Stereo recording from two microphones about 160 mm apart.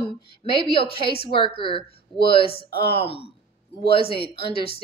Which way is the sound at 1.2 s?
35° left (ahead or behind).